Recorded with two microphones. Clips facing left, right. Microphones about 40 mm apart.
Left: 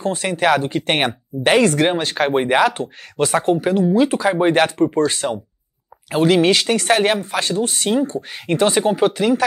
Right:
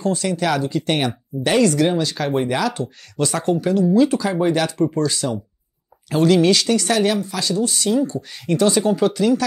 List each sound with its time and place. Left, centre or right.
0.0 s speech: left
6.0 s speech: left